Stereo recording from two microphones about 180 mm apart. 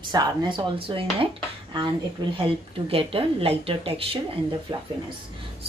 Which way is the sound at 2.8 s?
30° right (ahead or behind).